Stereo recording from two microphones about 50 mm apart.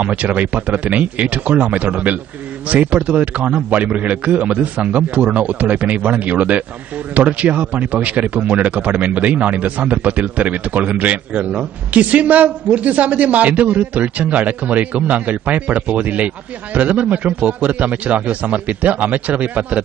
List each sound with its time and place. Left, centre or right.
0.0 s a man's voice: right